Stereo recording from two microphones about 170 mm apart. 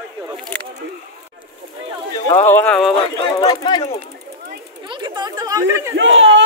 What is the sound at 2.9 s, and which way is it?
Speech, 30° left (ahead or behind).